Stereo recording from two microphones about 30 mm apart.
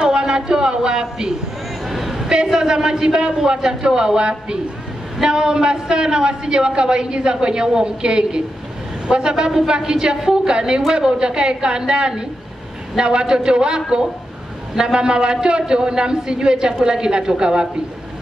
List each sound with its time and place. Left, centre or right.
0.0 s speech: right
1.9 s a sound: centre
2.2 s a woman's voice: right